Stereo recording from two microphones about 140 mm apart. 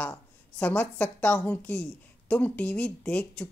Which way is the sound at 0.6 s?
10° left (ahead or behind).